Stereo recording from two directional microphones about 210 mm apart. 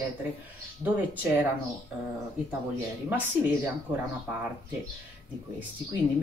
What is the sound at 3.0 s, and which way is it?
Speech, 10° right (ahead or behind).